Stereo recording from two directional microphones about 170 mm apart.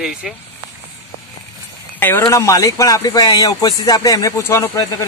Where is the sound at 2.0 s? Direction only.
10° left (ahead or behind).